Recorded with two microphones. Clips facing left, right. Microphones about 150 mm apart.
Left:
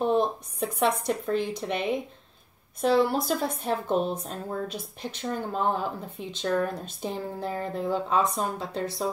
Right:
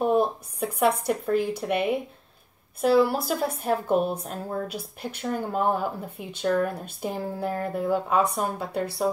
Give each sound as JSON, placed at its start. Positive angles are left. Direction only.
{"t": 0.0, "sound": "a woman's voice", "side_deg": -10}